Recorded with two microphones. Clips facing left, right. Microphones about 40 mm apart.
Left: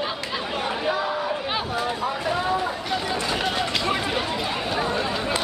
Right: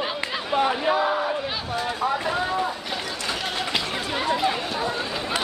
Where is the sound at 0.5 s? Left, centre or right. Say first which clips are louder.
Right 5 dB; centre.